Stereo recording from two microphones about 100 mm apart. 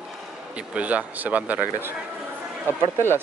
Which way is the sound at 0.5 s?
15° right (ahead or behind).